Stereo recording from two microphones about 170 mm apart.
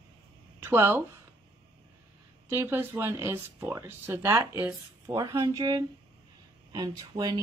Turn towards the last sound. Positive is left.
turn(degrees=-25)  # may be behind; listen again after turning